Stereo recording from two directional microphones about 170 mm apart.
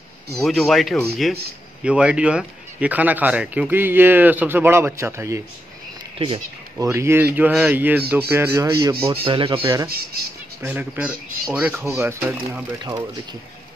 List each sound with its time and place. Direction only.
0.4 s speech: centre (ahead or behind); by 5.4 s 15° right (ahead or behind)
6.1 s speech: 30° right (ahead or behind)
6.8 s speech: 15° right (ahead or behind)
9.2 s speech: 30° right (ahead or behind)
9.8 s speech: 65° right (ahead or behind)
10.6 s speech: 10° right (ahead or behind)